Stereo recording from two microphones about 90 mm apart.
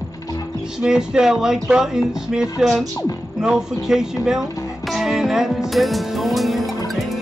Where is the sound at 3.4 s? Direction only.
5° right (ahead or behind).